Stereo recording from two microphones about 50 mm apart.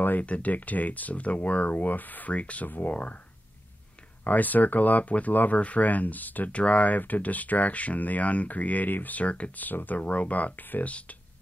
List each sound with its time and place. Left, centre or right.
0.2 s speech: left
4.2 s speech: left
10.9 s speech: left